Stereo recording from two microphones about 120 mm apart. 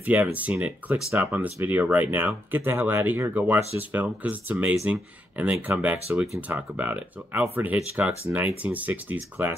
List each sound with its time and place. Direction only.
0.0 s speech: 15° right (ahead or behind)